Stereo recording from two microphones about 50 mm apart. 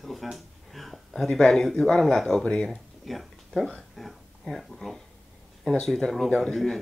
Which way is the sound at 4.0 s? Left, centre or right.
Centre.